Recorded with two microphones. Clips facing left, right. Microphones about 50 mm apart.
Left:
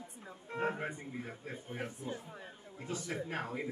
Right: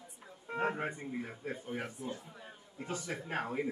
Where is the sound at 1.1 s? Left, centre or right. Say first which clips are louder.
Right 4 dB; centre.